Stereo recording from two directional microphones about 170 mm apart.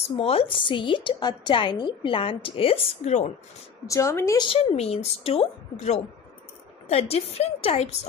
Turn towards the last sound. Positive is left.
turn(degrees=40)  # may be behind; listen again after turning